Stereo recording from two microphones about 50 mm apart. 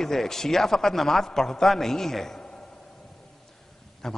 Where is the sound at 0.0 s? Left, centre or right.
Centre.